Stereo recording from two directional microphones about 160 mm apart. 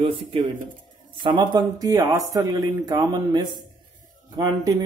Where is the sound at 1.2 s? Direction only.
30° right (ahead or behind).